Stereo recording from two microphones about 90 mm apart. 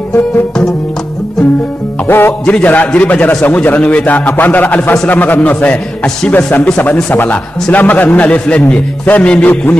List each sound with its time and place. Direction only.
2.0 s a man's voice: 25° left (ahead or behind)